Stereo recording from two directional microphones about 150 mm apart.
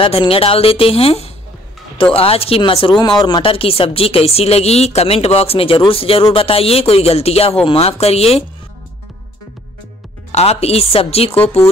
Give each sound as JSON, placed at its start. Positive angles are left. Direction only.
{"t": 0.0, "sound": "speech", "side_deg": 35}
{"t": 10.3, "sound": "speech", "side_deg": 45}